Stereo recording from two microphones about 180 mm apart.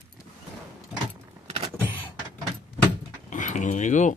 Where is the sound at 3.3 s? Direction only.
45° left (ahead or behind).